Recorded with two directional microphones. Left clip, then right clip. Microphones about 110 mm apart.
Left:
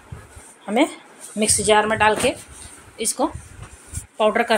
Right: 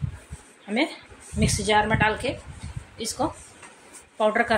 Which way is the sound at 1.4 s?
15° left (ahead or behind).